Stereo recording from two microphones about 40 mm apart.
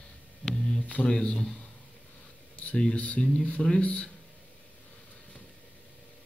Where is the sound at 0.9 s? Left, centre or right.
Left.